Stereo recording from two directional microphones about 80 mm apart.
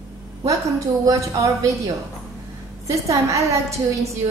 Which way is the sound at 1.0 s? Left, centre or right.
Right.